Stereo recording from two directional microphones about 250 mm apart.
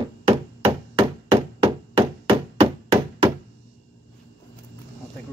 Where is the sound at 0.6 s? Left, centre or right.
Right.